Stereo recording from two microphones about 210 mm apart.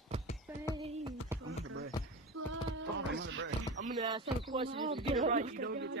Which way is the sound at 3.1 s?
60° right (ahead or behind).